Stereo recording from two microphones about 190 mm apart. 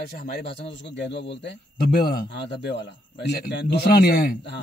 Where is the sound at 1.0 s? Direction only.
65° left (ahead or behind).